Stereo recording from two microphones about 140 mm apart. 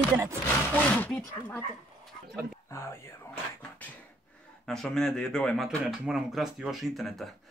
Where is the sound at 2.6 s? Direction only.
20° left (ahead or behind).